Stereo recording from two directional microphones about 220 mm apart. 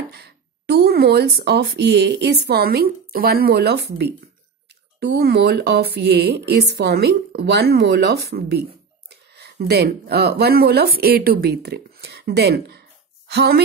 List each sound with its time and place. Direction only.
0.1 s speech: 50° right (ahead or behind)